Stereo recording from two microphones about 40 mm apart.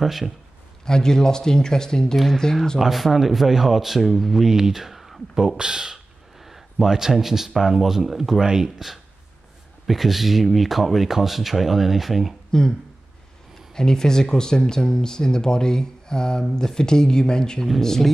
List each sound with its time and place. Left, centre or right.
0.0 s speech: centre
0.8 s speech: centre
2.8 s speech: centre
5.6 s speech: centre
6.4 s speech: centre
12.4 s a sound: centre
13.7 s speech: centre